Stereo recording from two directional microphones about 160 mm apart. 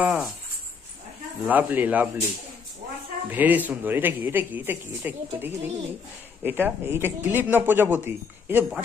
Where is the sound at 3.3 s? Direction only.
10° right (ahead or behind).